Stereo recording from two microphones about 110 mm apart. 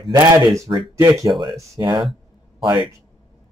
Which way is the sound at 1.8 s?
45° right (ahead or behind).